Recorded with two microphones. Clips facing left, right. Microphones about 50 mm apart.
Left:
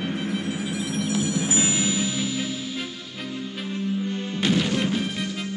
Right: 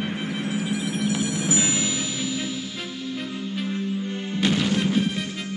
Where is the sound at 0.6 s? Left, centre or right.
Right.